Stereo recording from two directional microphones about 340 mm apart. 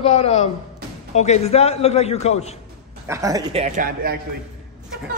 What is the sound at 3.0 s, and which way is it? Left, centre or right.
Speech, centre.